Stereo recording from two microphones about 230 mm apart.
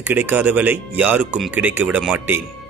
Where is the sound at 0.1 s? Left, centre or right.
Centre.